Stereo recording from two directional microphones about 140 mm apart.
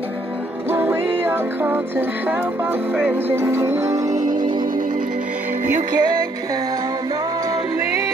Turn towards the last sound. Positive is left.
turn(degrees=-30)  # may be behind; listen again after turning